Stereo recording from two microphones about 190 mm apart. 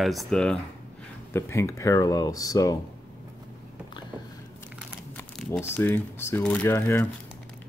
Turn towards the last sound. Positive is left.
turn(degrees=10)  # may be behind; listen again after turning